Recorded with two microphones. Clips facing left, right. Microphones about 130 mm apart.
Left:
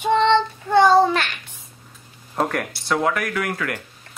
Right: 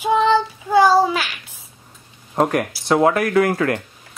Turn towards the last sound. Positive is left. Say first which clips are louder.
# right 9 dB
turn(degrees=-30)  # may be behind; listen again after turning